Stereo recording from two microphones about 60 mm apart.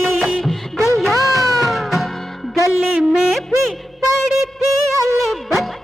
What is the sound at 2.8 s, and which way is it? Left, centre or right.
Music, centre.